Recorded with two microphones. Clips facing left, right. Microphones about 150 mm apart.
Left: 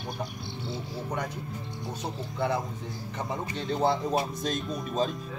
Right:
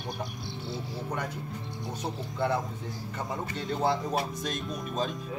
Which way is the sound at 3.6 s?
Centre (ahead or behind).